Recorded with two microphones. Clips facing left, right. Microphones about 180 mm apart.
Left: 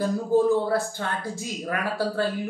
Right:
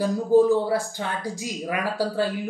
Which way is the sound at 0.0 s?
15° right (ahead or behind).